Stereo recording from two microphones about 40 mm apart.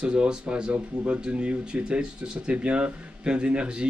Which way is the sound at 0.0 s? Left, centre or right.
Right.